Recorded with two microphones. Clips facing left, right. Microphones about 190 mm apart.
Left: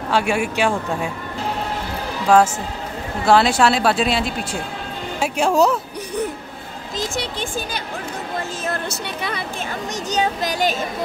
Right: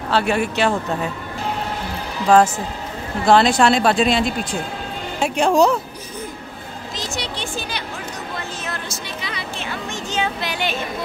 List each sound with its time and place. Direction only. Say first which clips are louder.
0.1 s speech: right 1 dB; 10° left (ahead or behind)
2.3 s speech: right 1 dB; 10° left (ahead or behind)
7.0 s speech: left 3 dB; 50° left (ahead or behind)
8.6 s a sound: left 4 dB; 60° left (ahead or behind); by 10.9 s 40° left (ahead or behind)